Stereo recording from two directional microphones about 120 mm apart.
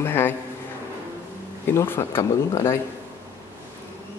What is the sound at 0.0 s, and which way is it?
Speech, 15° left (ahead or behind).